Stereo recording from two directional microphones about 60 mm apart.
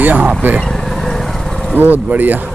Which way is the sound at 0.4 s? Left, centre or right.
Right.